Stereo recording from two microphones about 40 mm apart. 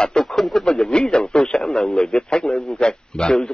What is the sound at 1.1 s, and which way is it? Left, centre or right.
A man's voice, left.